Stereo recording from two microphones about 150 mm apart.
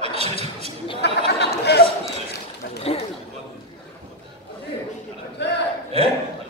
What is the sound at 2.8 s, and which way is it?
Chatter, 45° left (ahead or behind).